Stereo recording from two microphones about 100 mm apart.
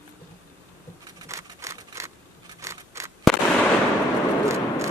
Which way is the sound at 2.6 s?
30° right (ahead or behind).